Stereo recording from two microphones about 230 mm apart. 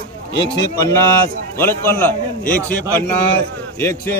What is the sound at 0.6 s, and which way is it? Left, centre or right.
Speech, centre.